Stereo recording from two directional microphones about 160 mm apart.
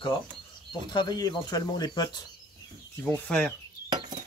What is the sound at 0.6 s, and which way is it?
Speech, 25° left (ahead or behind).